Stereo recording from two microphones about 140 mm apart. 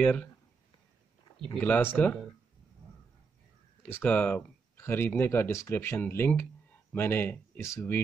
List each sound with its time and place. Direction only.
0.0 s speech: 10° left (ahead or behind)
1.5 s speech: 10° left (ahead or behind)
3.9 s speech: 10° left (ahead or behind)